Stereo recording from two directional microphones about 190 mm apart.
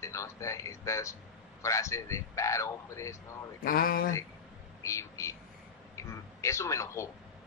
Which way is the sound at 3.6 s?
50° left (ahead or behind).